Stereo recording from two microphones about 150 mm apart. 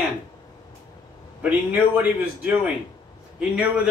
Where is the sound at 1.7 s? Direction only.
10° right (ahead or behind).